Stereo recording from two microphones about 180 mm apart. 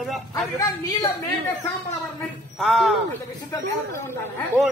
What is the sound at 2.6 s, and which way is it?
Speech, centre (ahead or behind).